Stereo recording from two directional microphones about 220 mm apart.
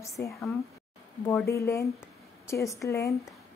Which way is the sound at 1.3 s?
15° left (ahead or behind).